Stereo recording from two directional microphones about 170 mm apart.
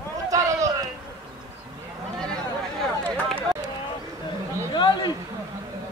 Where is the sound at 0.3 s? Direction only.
20° right (ahead or behind).